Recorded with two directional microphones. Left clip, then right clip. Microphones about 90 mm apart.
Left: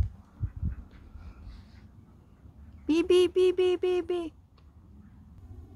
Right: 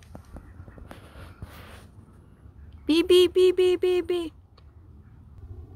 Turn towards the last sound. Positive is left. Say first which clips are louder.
# right 4 dB
turn(degrees=-35)  # may be behind; listen again after turning